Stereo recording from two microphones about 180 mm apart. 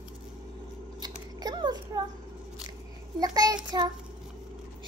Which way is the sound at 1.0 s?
25° right (ahead or behind).